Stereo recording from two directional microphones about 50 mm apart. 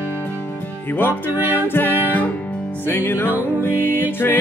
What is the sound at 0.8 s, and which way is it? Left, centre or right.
Music, left.